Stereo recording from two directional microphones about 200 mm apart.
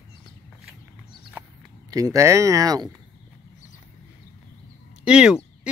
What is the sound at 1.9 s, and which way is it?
Speech, 15° right (ahead or behind).